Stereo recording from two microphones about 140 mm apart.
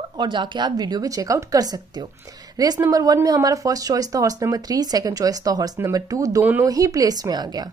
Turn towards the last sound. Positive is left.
turn(degrees=-30)  # may be behind; listen again after turning